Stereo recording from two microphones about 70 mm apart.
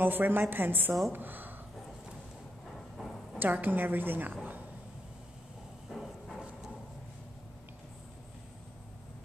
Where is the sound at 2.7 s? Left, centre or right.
Centre.